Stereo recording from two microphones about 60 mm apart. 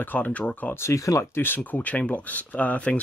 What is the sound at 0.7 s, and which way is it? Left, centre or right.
Speech, left.